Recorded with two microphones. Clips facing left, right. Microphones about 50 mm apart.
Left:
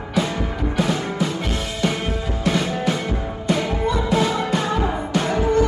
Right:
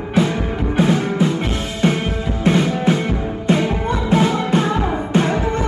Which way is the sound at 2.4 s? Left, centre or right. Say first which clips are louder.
Right 5 dB; right.